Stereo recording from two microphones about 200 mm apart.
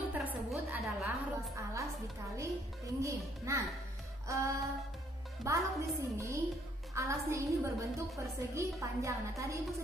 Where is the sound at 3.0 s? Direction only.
15° right (ahead or behind).